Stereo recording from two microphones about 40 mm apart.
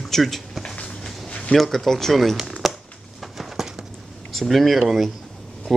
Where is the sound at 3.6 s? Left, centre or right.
Centre.